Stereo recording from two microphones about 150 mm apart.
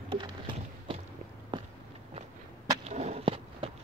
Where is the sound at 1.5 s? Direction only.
30° right (ahead or behind).